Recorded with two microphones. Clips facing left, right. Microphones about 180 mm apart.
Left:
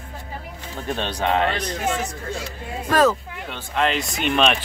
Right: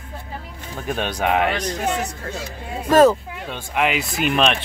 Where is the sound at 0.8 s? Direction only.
10° right (ahead or behind).